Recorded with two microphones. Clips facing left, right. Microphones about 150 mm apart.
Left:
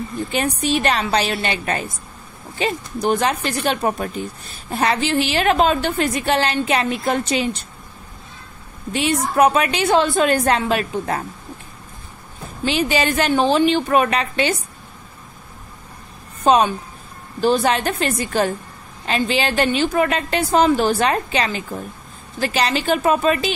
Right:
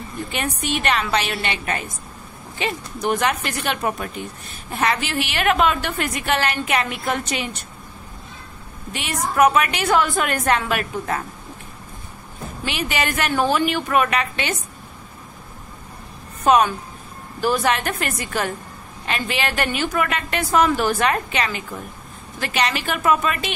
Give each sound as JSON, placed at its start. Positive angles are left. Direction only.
{"t": 0.3, "sound": "a woman's voice", "side_deg": 35}
{"t": 8.9, "sound": "a woman's voice", "side_deg": 30}
{"t": 12.6, "sound": "a woman's voice", "side_deg": 30}
{"t": 16.5, "sound": "a woman's voice", "side_deg": 30}